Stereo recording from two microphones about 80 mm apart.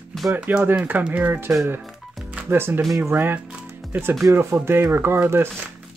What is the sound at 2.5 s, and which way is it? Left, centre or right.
Speech, right.